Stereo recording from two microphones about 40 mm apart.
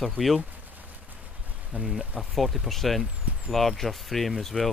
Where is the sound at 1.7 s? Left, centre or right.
Right.